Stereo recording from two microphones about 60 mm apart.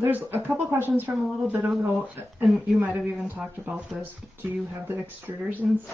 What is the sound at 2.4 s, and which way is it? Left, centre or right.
Speech, centre.